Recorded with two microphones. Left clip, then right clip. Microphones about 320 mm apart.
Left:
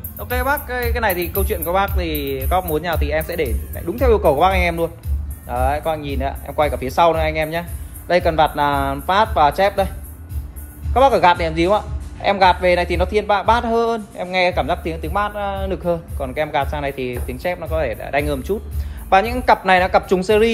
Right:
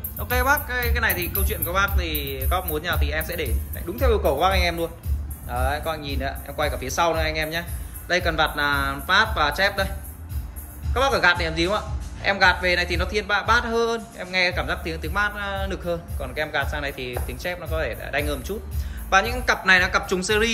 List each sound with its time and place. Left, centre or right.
0.2 s a man's voice: centre
11.0 s a man's voice: centre